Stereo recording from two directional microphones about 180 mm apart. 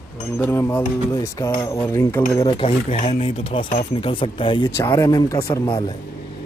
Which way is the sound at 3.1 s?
30° left (ahead or behind).